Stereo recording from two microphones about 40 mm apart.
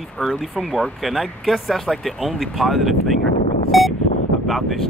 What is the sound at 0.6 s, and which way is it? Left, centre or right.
Speech, centre.